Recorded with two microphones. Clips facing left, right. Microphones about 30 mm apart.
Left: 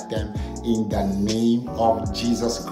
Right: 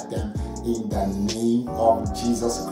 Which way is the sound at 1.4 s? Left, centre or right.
Left.